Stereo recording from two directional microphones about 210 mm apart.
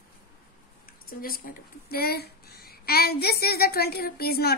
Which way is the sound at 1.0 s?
45° left (ahead or behind).